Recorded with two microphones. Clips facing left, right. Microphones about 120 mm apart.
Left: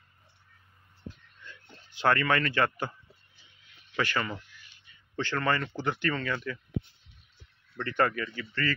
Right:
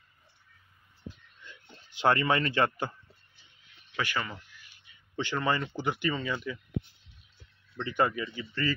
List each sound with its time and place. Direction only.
1.4 s a sound: 20° right (ahead or behind)
3.9 s speech: 10° right (ahead or behind)
7.7 s speech: 10° right (ahead or behind)